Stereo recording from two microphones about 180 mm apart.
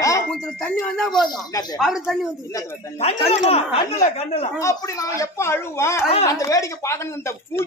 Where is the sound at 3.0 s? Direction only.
35° left (ahead or behind).